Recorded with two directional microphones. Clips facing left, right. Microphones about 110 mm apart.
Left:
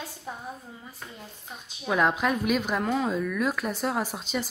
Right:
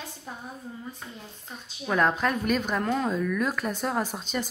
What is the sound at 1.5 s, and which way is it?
A woman's voice, 5° left (ahead or behind).